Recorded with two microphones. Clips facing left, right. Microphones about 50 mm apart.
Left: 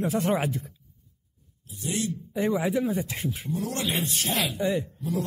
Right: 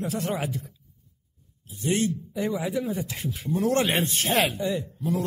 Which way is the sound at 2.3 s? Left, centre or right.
Left.